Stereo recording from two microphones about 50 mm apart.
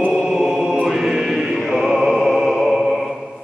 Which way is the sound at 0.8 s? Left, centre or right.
Centre.